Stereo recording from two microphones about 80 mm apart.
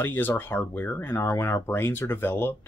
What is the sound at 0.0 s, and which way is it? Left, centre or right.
Speech, left.